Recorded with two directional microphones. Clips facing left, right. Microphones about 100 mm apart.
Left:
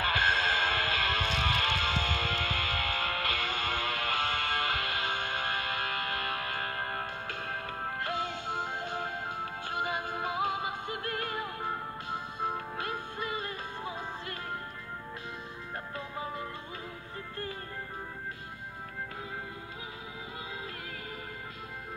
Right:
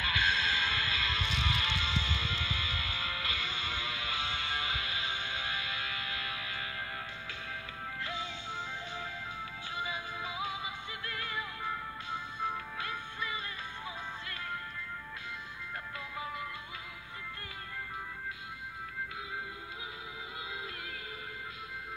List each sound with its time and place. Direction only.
0.0 s music: 45° left (ahead or behind)
16.2 s music: 35° left (ahead or behind)